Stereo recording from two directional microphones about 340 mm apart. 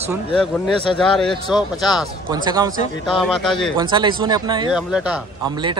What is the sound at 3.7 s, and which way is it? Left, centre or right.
Speech, centre.